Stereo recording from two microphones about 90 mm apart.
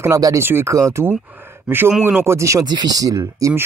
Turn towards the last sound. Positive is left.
turn(degrees=-40)  # may be behind; listen again after turning